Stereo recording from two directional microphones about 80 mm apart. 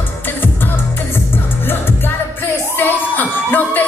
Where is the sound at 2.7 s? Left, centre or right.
Left.